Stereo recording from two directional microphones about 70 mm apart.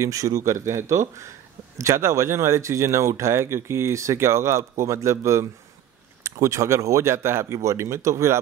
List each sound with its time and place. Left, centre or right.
0.0 s speech: right